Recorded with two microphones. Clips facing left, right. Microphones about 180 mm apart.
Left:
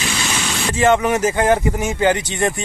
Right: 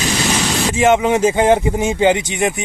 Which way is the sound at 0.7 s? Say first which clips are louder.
Right 1 dB; 10° right (ahead or behind).